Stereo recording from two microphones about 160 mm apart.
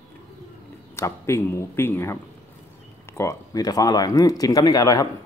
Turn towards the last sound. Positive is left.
turn(degrees=20)  # may be behind; listen again after turning